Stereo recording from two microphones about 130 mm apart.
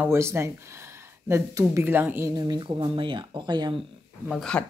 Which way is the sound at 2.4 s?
35° right (ahead or behind).